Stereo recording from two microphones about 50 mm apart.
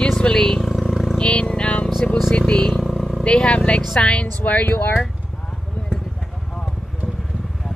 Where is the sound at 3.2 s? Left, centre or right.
Centre.